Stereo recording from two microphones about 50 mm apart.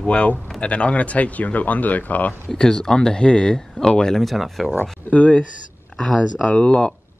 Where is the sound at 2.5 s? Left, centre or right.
Centre.